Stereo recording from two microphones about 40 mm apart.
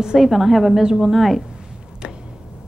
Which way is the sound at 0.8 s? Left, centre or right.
Centre.